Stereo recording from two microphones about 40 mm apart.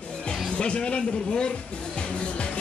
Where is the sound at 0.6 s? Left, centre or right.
Left.